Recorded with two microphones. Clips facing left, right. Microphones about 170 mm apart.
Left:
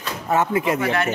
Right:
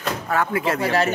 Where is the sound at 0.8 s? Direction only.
35° right (ahead or behind).